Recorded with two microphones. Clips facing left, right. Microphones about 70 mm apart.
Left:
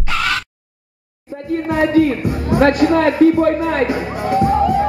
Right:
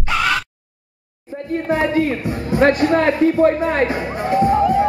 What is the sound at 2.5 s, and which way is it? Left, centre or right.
Speech, left.